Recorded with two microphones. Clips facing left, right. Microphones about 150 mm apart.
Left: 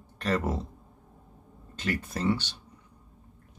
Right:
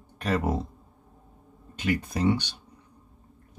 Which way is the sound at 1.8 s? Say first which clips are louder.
Right 4 dB; 15° right (ahead or behind).